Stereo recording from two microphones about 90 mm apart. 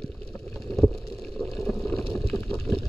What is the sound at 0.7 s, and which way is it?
Boat, 10° left (ahead or behind).